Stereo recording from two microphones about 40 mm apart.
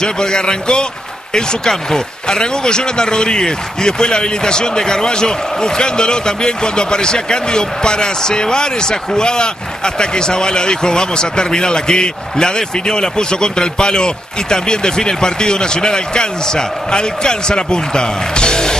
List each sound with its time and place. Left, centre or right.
0.0 s a man's voice: centre